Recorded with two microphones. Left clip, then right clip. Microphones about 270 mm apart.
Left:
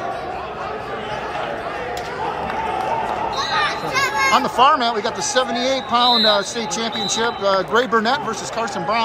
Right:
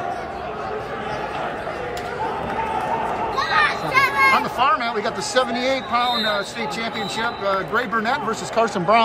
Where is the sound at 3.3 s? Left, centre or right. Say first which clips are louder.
Right 4 dB; centre.